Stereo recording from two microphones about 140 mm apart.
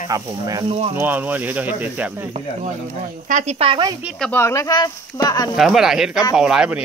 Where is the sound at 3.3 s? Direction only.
60° right (ahead or behind).